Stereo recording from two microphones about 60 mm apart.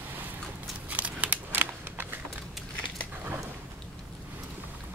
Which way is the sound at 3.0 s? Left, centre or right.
Right.